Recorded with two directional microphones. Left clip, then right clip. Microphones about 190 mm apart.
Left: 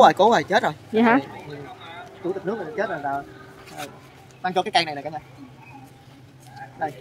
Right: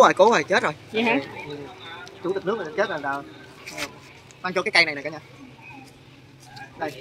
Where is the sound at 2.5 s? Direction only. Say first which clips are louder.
Right 2 dB; 15° left (ahead or behind).